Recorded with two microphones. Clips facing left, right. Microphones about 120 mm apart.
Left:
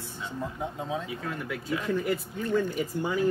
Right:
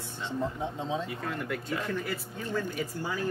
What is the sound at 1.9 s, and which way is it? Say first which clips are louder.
Speech: left 5 dB; 20° left (ahead or behind).